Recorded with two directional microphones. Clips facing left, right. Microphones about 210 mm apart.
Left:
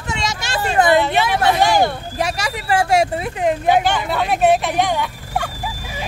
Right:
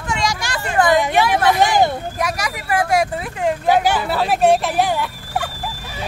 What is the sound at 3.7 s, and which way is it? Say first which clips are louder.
Turkey: right 2 dB; 5° right (ahead or behind).